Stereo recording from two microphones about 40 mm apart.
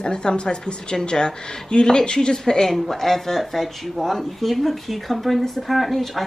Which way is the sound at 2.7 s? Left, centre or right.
Centre.